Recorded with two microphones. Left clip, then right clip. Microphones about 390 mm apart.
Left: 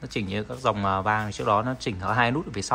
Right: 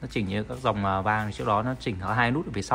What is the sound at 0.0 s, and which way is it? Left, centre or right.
Speech, centre.